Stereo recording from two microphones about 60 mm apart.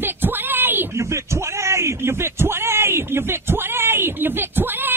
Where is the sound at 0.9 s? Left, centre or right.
Right.